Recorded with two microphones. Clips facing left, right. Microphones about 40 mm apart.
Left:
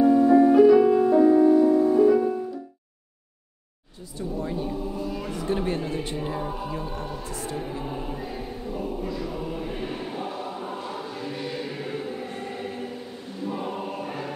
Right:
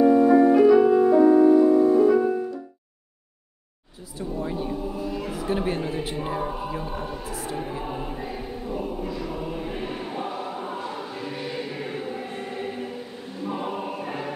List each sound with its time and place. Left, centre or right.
0.0 s music: right
0.5 s music: centre
1.0 s music: right
4.4 s a sound: centre
13.5 s choir: centre